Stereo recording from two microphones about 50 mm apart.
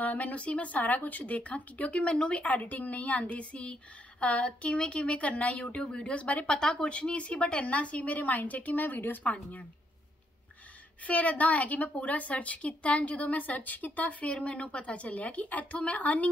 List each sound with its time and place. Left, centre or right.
0.0 s a woman's voice: left
9.2 s a woman's voice: left
11.1 s a woman's voice: left